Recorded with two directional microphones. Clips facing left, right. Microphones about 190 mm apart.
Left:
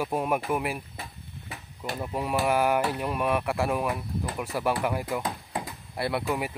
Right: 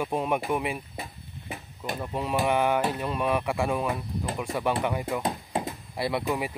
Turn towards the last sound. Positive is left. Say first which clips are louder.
# right 1 dB
turn(degrees=0)  # may be behind; listen again after turning